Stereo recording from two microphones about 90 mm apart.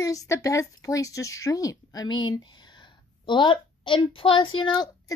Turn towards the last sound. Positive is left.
turn(degrees=60)  # may be behind; listen again after turning